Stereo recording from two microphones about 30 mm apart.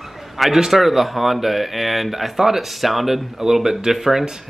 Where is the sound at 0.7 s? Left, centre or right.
Centre.